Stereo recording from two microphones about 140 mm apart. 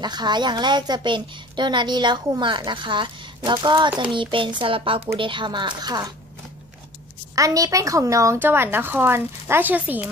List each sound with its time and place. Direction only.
0.0 s a woman's voice: 30° right (ahead or behind)
7.3 s speech: 25° right (ahead or behind)